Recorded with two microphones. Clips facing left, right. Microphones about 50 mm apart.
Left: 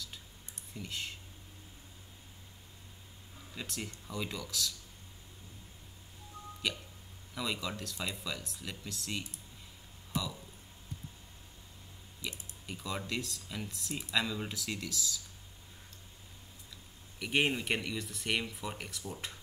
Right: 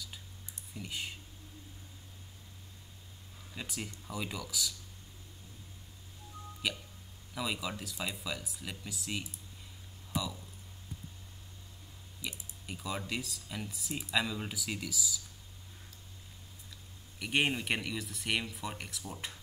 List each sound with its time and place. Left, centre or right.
0.7 s speech: centre
3.5 s speech: centre
6.6 s speech: centre
12.2 s speech: centre
17.2 s speech: centre